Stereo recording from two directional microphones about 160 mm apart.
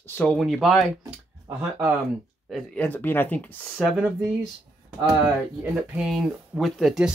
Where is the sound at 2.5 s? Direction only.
10° left (ahead or behind).